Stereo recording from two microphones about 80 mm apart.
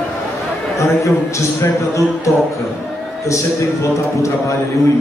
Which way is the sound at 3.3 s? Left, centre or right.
Left.